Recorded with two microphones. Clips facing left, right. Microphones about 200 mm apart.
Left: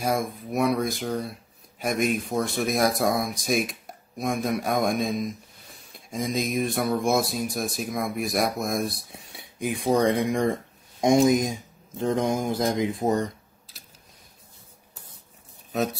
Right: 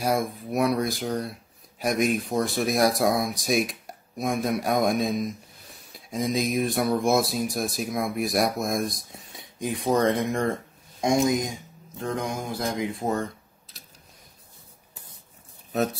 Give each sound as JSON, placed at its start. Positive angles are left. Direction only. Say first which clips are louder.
{"t": 0.0, "sound": "speech", "louder": "right 1 dB", "side_deg": 0}